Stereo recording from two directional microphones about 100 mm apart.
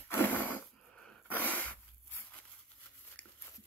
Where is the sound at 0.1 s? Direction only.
20° left (ahead or behind).